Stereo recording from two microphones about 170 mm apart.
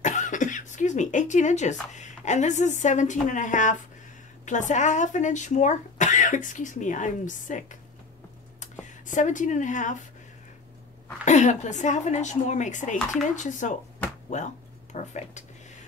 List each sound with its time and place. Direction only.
0.0 s speech: 45° left (ahead or behind)
9.0 s speech: 50° left (ahead or behind)
11.2 s speech: 45° left (ahead or behind)